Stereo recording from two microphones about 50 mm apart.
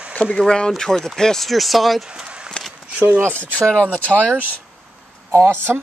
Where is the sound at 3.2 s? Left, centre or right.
Right.